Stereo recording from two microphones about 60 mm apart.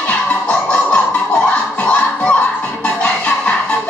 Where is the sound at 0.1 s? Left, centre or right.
Left.